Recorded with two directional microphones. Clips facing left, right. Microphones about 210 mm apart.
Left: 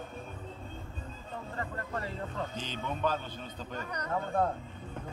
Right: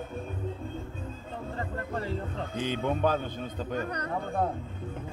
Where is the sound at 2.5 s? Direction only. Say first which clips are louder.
Right 8 dB; 55° right (ahead or behind).